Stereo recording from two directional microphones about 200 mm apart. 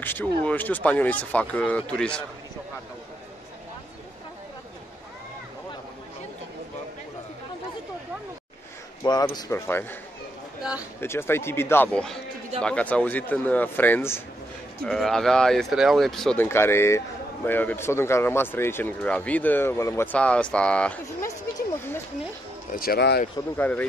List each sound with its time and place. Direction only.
0.0 s speech: 10° left (ahead or behind)
9.0 s speech: 20° left (ahead or behind)
10.6 s speech: 5° right (ahead or behind)
11.0 s speech: 10° left (ahead or behind)
21.5 s a sound: 10° left (ahead or behind)
22.7 s speech: 50° left (ahead or behind)
23.6 s speech: 5° left (ahead or behind)